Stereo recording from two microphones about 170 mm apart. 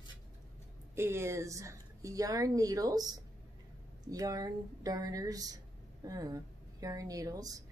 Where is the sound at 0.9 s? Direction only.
15° right (ahead or behind).